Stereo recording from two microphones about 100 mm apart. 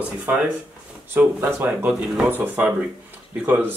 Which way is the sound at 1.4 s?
20° right (ahead or behind).